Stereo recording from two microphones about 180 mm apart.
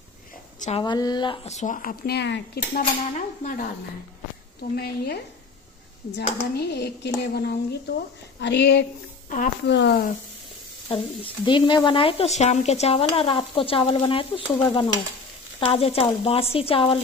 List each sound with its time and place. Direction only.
0.6 s speech: 35° left (ahead or behind)
0.8 s speech: 20° left (ahead or behind); by 2.8 s 65° left (ahead or behind)
3.2 s speech: 50° left (ahead or behind)
4.7 s speech: 60° left (ahead or behind)
10.9 s speech: 25° left (ahead or behind)